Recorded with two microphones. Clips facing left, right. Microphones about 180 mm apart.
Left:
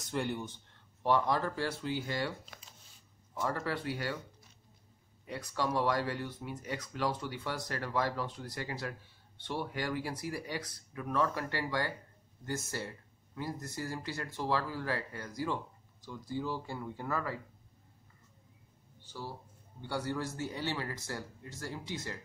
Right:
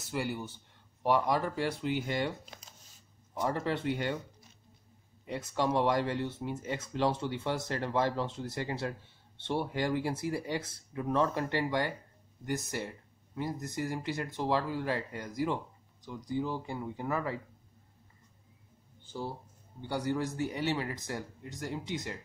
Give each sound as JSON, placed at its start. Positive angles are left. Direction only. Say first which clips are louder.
{"t": 0.0, "sound": "speech", "louder": "even", "side_deg": -5}
{"t": 5.2, "sound": "speech", "louder": "right 4 dB", "side_deg": -25}
{"t": 19.8, "sound": "speech", "louder": "right 3 dB", "side_deg": -15}